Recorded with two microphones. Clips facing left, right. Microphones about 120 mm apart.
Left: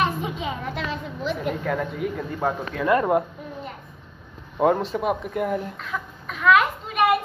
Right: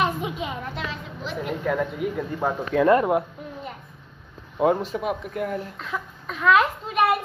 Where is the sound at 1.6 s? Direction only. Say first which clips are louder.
Right 1 dB; 5° right (ahead or behind).